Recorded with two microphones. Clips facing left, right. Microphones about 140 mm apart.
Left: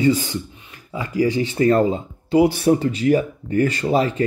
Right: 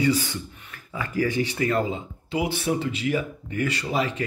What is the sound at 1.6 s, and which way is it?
Speech, 40° left (ahead or behind).